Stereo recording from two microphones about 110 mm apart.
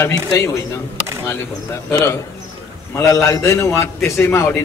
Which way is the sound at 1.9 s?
25° left (ahead or behind).